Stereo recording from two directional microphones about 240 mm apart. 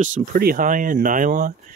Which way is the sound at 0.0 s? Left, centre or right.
Right.